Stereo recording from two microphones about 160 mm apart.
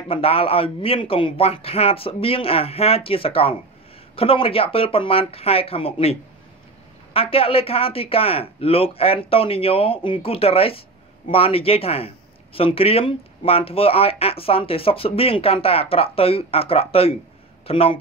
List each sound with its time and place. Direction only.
0.1 s speech: 35° left (ahead or behind)
7.2 s speech: 35° left (ahead or behind)